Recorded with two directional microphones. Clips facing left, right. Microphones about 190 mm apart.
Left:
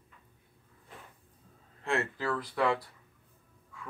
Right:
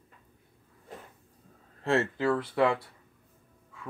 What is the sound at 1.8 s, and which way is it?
Speech, 30° right (ahead or behind).